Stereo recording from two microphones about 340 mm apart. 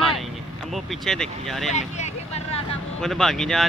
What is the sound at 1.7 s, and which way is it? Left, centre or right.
Vehicle, centre.